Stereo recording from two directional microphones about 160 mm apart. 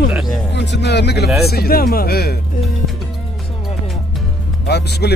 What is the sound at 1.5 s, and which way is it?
Speech, 70° left (ahead or behind).